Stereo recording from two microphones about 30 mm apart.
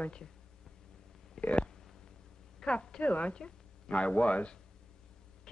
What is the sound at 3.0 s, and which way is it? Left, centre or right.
Speech, left.